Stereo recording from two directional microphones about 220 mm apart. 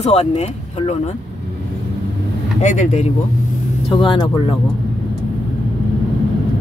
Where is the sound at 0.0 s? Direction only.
25° left (ahead or behind).